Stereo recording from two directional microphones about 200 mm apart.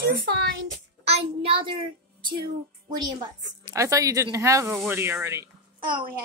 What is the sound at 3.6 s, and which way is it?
Speech, 15° right (ahead or behind).